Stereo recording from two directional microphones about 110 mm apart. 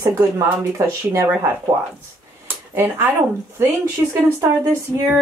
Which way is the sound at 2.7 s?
20° right (ahead or behind).